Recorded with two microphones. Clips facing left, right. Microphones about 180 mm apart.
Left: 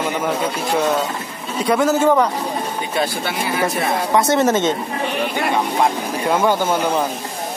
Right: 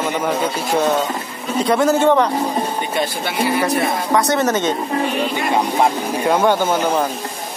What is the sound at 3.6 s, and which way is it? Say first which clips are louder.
Speech: right 1 dB; 25° left (ahead or behind).